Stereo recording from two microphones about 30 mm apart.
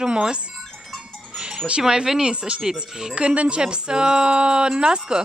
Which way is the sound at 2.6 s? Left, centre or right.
Right.